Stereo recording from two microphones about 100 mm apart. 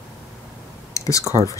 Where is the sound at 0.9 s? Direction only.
35° left (ahead or behind).